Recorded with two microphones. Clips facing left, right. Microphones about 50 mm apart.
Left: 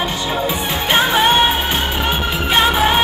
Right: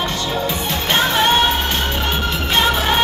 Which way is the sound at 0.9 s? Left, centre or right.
Centre.